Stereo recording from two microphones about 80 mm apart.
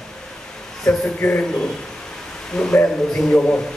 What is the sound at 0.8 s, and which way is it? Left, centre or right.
Speech, left.